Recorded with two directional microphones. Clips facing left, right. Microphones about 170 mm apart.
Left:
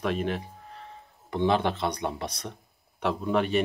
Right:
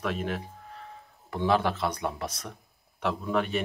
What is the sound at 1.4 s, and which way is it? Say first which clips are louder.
Speech: even; 25° left (ahead or behind).